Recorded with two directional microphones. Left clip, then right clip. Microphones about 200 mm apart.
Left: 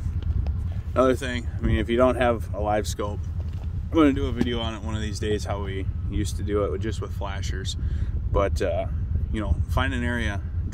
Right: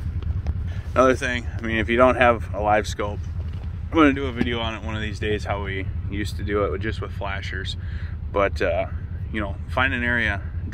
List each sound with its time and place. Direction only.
0.9 s speech: 10° left (ahead or behind)
8.3 s speech: 10° left (ahead or behind)